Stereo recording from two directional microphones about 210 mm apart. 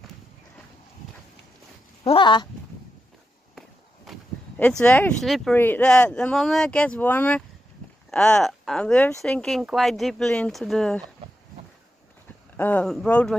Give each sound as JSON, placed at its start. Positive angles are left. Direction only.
{"t": 2.0, "sound": "speech", "side_deg": 20}
{"t": 3.5, "sound": "speech", "side_deg": 0}
{"t": 12.5, "sound": "speech", "side_deg": 10}